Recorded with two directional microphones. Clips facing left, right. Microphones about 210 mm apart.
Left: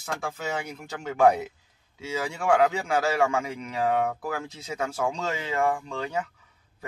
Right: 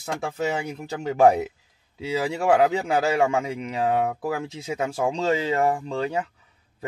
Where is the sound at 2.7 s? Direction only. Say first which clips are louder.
Right 3 dB; 20° right (ahead or behind).